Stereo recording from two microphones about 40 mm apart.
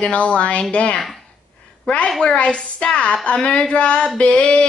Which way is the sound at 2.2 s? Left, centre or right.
Left.